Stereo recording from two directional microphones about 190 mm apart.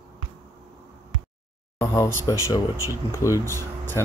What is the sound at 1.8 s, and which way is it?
Speech, 15° left (ahead or behind).